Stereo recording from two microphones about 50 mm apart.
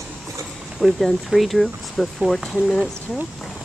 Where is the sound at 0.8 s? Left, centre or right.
Centre.